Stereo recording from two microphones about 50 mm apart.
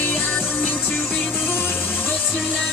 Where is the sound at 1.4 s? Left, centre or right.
Left.